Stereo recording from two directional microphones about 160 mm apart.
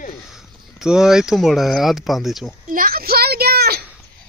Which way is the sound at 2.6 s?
60° right (ahead or behind).